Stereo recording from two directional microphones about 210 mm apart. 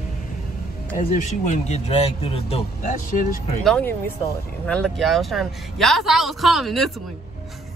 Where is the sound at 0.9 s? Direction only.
35° left (ahead or behind).